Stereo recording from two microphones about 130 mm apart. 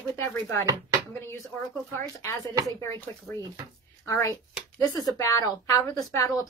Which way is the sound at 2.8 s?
20° left (ahead or behind).